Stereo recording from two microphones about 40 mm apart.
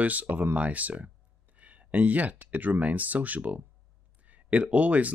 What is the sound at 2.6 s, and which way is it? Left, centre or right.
Speech, right.